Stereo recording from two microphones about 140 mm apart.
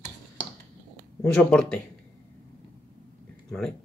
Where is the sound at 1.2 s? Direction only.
10° left (ahead or behind).